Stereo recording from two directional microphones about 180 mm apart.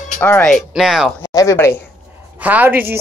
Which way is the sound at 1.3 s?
15° left (ahead or behind).